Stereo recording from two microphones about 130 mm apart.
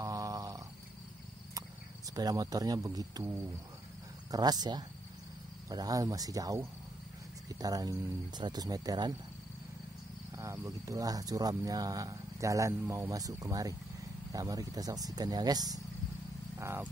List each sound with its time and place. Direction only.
0.0 s snoring: 25° right (ahead or behind)
2.1 s speech: 30° right (ahead or behind)
4.3 s speech: 30° right (ahead or behind)
10.3 s speech: 25° right (ahead or behind)
16.5 s speech: 20° right (ahead or behind)